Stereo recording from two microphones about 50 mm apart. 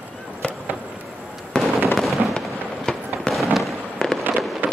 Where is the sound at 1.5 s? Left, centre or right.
Centre.